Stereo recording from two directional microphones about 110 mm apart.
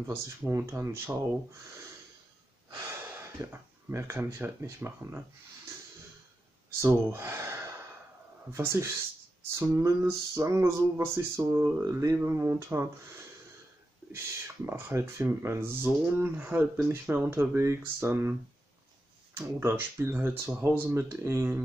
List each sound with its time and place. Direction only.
0.1 s speech: 20° right (ahead or behind)
2.9 s speech: 20° right (ahead or behind)
6.8 s speech: 25° right (ahead or behind)
14.7 s speech: 20° right (ahead or behind)
19.3 s speech: 20° right (ahead or behind)